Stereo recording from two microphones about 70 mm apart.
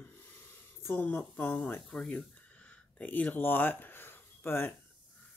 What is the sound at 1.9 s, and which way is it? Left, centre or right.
Speech, centre.